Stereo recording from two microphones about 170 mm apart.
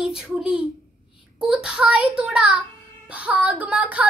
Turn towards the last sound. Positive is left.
turn(degrees=-10)  # may be behind; listen again after turning